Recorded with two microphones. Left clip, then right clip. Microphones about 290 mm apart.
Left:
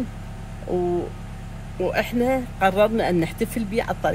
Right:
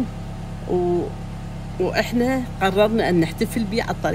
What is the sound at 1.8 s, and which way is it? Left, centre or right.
Speech, centre.